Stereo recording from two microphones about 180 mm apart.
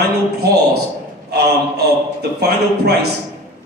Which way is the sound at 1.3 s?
60° right (ahead or behind).